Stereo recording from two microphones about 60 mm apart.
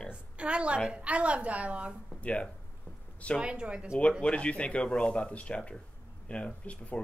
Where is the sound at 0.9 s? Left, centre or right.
Right.